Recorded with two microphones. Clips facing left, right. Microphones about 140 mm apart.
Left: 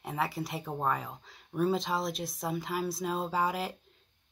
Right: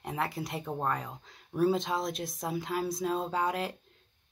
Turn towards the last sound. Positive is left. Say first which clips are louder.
# even
turn(degrees=0)  # may be behind; listen again after turning